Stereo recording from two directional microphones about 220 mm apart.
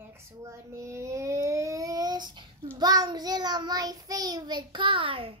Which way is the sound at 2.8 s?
15° right (ahead or behind).